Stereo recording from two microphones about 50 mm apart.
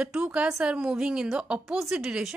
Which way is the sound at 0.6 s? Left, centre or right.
Centre.